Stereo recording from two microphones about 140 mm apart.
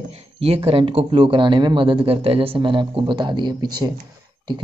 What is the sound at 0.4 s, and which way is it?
Speech, 45° right (ahead or behind).